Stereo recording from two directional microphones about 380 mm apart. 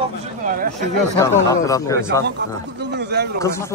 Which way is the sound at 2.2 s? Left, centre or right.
Right.